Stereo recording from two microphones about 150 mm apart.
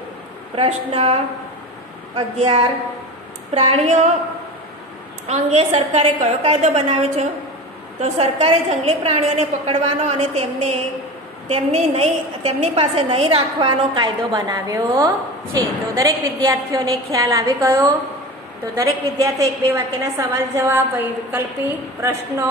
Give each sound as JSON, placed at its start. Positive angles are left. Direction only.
{"t": 0.6, "sound": "a woman's voice", "side_deg": -40}
{"t": 2.1, "sound": "a woman's voice", "side_deg": -35}
{"t": 5.3, "sound": "a woman's voice", "side_deg": -45}